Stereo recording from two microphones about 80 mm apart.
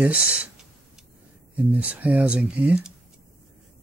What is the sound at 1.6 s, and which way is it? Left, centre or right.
Speech, centre.